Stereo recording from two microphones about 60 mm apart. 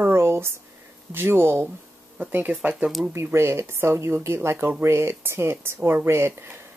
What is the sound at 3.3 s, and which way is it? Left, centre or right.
Speech, right.